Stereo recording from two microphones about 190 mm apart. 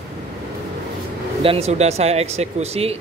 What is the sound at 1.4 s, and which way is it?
Speech, 30° right (ahead or behind).